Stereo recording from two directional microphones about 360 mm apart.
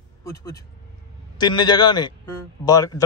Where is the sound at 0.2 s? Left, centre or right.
Centre.